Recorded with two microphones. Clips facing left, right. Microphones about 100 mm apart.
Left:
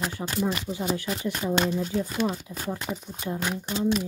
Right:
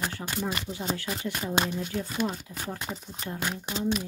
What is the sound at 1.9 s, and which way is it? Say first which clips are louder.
Speech: left 3 dB; 20° left (ahead or behind).